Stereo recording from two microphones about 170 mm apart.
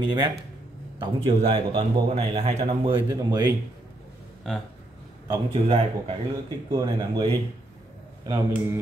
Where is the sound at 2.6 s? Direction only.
25° right (ahead or behind).